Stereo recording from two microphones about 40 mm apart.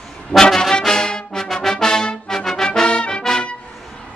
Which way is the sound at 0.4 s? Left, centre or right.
Centre.